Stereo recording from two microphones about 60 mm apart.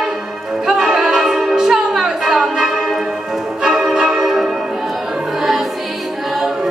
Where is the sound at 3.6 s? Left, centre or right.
Centre.